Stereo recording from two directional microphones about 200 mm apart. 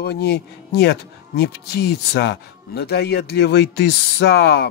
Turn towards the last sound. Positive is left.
turn(degrees=50)  # may be behind; listen again after turning